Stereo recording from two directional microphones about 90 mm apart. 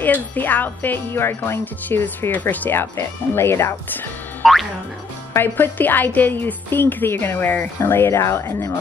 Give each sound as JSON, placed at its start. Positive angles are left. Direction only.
{"t": 0.0, "sound": "speech", "side_deg": 20}